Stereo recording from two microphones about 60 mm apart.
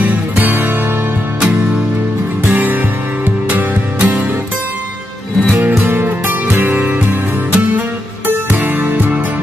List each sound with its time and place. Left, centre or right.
0.0 s music: right
2.4 s music: right
5.9 s music: right